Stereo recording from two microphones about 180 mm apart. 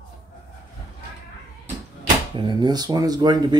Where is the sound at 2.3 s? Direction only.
25° right (ahead or behind).